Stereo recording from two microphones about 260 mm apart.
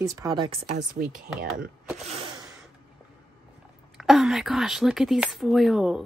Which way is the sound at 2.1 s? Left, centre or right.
Centre.